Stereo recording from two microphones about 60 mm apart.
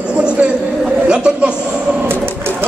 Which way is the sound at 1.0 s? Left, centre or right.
Centre.